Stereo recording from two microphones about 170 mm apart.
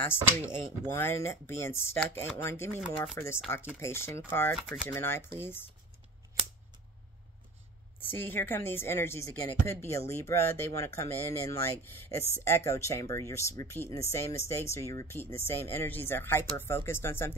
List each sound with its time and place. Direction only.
0.0 s a woman's voice: 10° left (ahead or behind)
4.6 s speech: 5° right (ahead or behind)
4.8 s a woman's voice: 15° left (ahead or behind)
8.1 s a woman's voice: 10° left (ahead or behind)